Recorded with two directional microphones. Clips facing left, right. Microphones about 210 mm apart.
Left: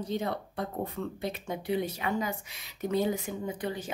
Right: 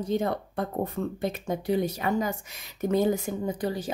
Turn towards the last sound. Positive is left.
turn(degrees=-40)  # may be behind; listen again after turning